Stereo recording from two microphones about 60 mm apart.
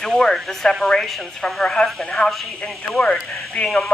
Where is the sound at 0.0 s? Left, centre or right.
Centre.